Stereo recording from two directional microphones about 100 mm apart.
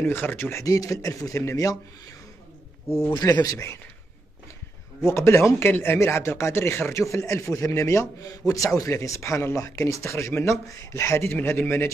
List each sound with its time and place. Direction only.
0.0 s speech: 25° left (ahead or behind)
0.7 s speech: 35° left (ahead or behind)
3.4 s speech: 25° left (ahead or behind)
5.0 s speech: 25° left (ahead or behind)